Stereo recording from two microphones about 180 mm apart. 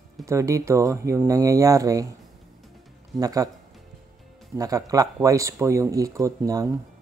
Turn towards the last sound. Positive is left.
turn(degrees=-20)  # may be behind; listen again after turning